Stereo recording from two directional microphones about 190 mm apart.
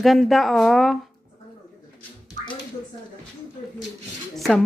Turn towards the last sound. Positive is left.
turn(degrees=0)  # may be behind; listen again after turning